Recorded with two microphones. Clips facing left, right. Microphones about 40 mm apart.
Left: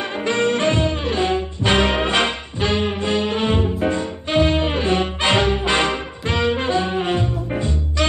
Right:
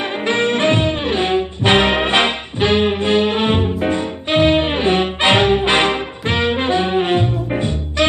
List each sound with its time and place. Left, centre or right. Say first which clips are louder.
0.2 s brass instrument: right 2 dB; right